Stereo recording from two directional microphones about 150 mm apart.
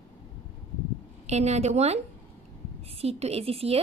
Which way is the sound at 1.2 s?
45° right (ahead or behind).